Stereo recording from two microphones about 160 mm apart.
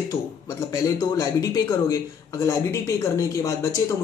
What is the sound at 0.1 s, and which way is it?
A man's voice, 20° left (ahead or behind).